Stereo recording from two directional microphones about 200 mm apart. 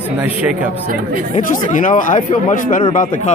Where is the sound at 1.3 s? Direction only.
40° left (ahead or behind).